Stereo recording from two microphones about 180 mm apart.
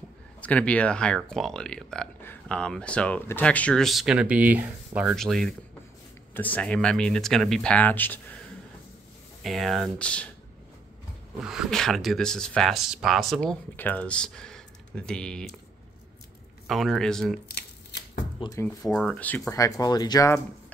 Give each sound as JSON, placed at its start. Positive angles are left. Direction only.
{"t": 0.4, "sound": "speech", "side_deg": 10}
{"t": 9.4, "sound": "speech", "side_deg": 0}
{"t": 11.4, "sound": "speech", "side_deg": -5}
{"t": 16.6, "sound": "speech", "side_deg": 0}
{"t": 17.5, "sound": "shuffling cards", "side_deg": 65}
{"t": 18.4, "sound": "speech", "side_deg": 20}
{"t": 18.9, "sound": "speech", "side_deg": 5}